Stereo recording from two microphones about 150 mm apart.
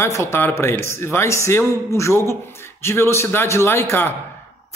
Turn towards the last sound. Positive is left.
turn(degrees=15)  # may be behind; listen again after turning